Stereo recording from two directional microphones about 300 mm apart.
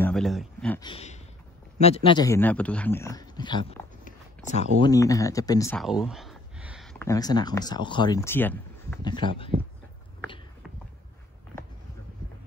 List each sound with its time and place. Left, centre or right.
0.0 s speech: centre
0.8 s a man's voice: left
4.0 s a sound: left
4.8 s speech: centre